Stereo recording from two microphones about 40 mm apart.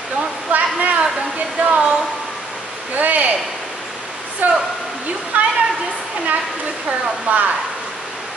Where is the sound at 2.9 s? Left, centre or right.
Right.